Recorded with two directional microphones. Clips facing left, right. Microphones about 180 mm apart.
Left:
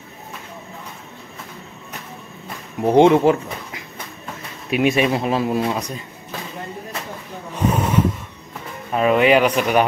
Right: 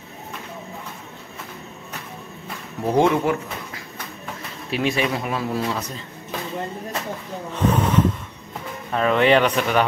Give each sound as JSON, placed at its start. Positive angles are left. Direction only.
{"t": 2.8, "sound": "speech", "side_deg": 25}
{"t": 7.5, "sound": "snort", "side_deg": 10}
{"t": 8.9, "sound": "a man's voice", "side_deg": 10}